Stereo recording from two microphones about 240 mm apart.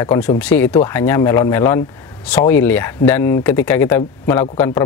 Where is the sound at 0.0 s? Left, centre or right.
Centre.